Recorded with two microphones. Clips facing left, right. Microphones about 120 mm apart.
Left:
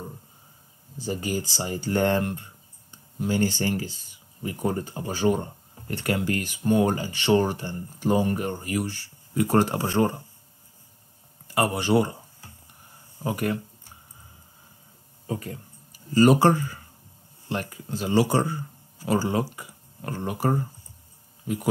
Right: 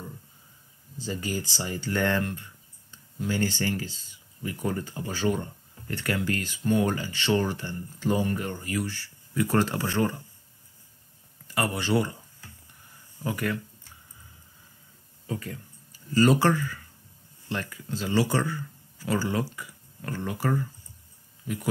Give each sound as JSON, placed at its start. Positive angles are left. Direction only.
{"t": 1.7, "sound": "speech", "side_deg": 15}
{"t": 11.5, "sound": "speech", "side_deg": 15}
{"t": 15.2, "sound": "speech", "side_deg": 25}
{"t": 15.7, "sound": "a sound", "side_deg": 15}
{"t": 17.5, "sound": "speech", "side_deg": 15}